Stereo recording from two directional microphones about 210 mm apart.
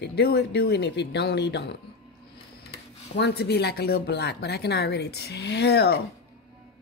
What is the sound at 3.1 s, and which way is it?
Speech, 50° left (ahead or behind).